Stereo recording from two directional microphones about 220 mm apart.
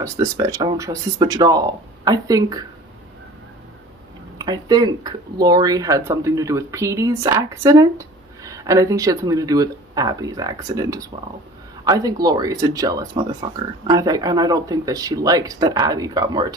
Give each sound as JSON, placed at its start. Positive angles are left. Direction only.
{"t": 0.0, "sound": "speech", "side_deg": -15}
{"t": 4.4, "sound": "speech", "side_deg": -15}